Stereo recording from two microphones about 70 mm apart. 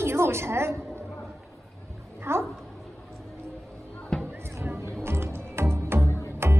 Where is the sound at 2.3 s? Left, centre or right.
Right.